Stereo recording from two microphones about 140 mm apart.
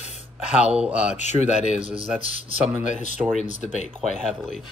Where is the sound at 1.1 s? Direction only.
55° left (ahead or behind).